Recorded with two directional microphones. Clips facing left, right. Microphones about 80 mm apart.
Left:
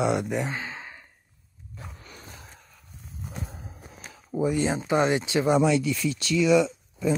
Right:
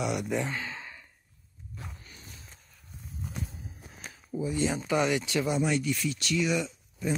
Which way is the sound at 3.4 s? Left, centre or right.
Left.